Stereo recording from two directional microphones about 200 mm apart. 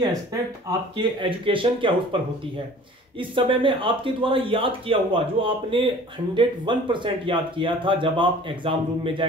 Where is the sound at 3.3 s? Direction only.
25° right (ahead or behind).